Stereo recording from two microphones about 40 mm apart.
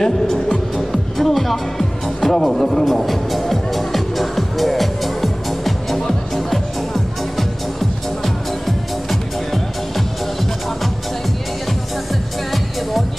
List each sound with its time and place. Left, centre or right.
0.0 s speech: centre
0.7 s music: centre
8.6 s music: centre